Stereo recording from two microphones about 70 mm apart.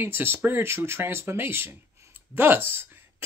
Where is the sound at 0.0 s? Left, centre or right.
Right.